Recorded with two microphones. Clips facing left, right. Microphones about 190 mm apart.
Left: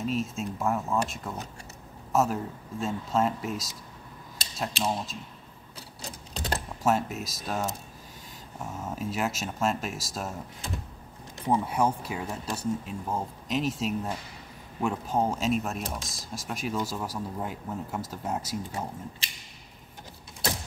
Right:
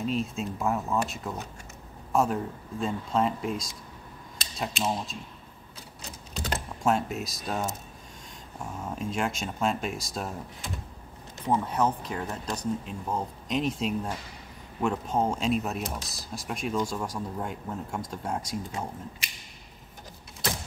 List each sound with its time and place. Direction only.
0.0 s speech: centre (ahead or behind)
6.8 s speech: centre (ahead or behind)
11.4 s speech: 10° left (ahead or behind)
19.2 s a sound: 30° left (ahead or behind)